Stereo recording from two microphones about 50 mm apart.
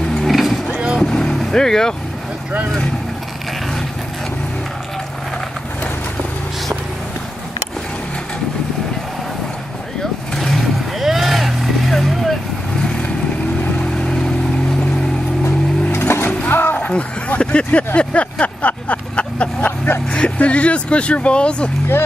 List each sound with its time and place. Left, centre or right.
0.3 s vehicle: centre
0.7 s boat: right
1.4 s speech: centre
10.3 s vehicle: centre
11.0 s vehicle: centre
15.4 s music: left
16.7 s a sound: left
17.6 s vehicle: left
20.1 s speech: left